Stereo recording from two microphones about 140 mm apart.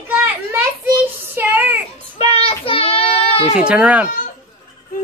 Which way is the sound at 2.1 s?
45° left (ahead or behind).